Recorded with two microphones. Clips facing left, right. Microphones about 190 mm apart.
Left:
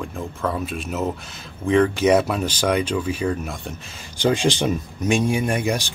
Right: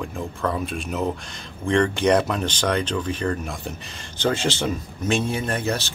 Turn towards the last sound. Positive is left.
turn(degrees=15)  # may be behind; listen again after turning